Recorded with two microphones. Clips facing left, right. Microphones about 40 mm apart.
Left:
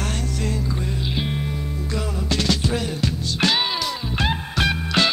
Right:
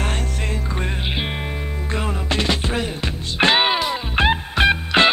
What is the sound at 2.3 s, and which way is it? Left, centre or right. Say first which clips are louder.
Music: even; right.